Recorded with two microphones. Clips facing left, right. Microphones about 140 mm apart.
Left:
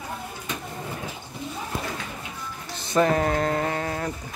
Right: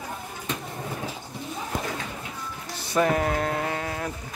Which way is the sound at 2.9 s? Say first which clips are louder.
Left 2 dB; 5° right (ahead or behind).